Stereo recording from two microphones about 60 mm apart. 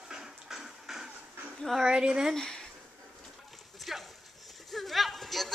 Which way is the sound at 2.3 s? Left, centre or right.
Centre.